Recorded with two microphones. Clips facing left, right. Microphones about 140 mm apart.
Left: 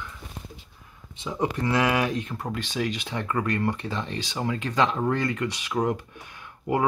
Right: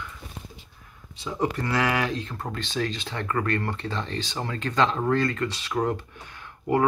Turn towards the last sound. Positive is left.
turn(degrees=15)  # may be behind; listen again after turning